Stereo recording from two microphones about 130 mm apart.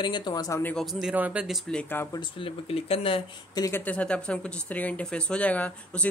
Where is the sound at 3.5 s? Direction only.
25° left (ahead or behind).